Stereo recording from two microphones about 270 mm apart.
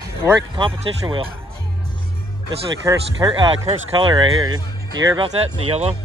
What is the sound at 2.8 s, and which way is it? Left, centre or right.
Speech, centre.